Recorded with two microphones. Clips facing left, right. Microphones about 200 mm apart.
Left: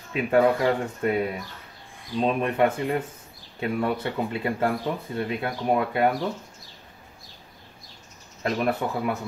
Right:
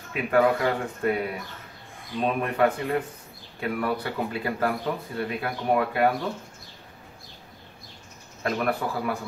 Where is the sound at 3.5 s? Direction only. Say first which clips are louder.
Left 2 dB; 25° left (ahead or behind).